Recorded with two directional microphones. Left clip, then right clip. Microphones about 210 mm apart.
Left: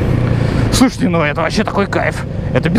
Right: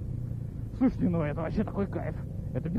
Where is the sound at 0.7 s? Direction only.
10° left (ahead or behind).